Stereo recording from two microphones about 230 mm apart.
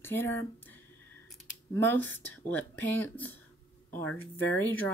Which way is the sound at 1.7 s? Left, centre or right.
Centre.